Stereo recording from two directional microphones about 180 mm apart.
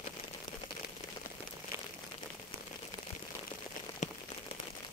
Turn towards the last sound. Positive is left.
turn(degrees=40)  # may be behind; listen again after turning